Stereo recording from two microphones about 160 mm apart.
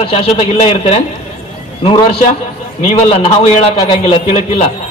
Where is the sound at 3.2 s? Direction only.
40° left (ahead or behind).